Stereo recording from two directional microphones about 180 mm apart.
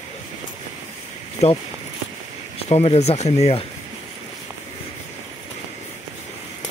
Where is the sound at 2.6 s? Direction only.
35° left (ahead or behind).